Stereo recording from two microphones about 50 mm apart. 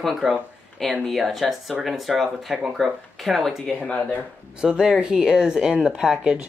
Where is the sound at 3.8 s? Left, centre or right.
Left.